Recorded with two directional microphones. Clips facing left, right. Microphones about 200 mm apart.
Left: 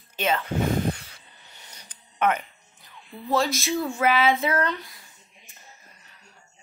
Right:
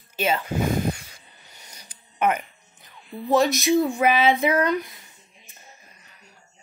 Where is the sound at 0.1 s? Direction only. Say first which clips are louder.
Right 1 dB; 10° right (ahead or behind).